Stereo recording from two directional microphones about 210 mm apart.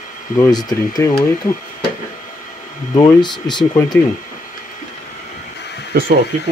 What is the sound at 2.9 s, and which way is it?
Speech, 20° left (ahead or behind).